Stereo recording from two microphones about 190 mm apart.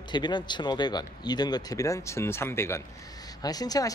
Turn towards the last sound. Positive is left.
turn(degrees=20)  # may be behind; listen again after turning